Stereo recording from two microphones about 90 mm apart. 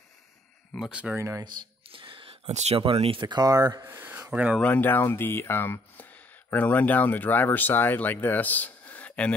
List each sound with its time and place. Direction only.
0.7 s speech: 10° right (ahead or behind)
1.1 s speech: 35° right (ahead or behind)
1.9 s speech: 70° right (ahead or behind); by 3.8 s 45° right (ahead or behind)
3.8 s speech: 20° right (ahead or behind)
4.6 s speech: 20° left (ahead or behind)